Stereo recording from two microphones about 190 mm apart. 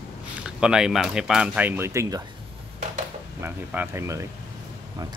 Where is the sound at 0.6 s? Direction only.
5° right (ahead or behind).